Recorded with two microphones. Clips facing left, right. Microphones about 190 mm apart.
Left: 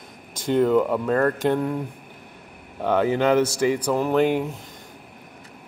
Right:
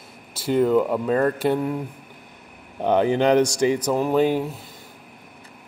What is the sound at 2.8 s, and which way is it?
Speech, 20° right (ahead or behind).